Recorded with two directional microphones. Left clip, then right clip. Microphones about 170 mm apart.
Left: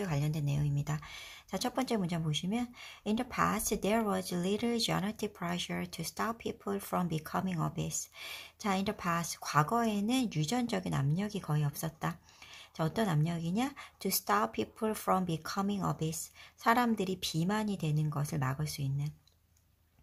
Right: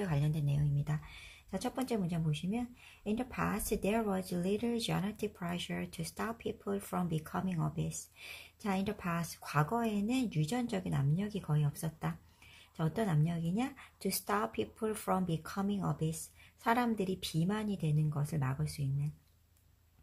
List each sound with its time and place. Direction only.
0.0 s speech: 15° left (ahead or behind)